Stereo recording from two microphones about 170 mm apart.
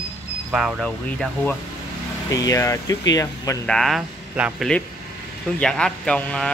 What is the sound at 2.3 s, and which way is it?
Speech, 20° left (ahead or behind).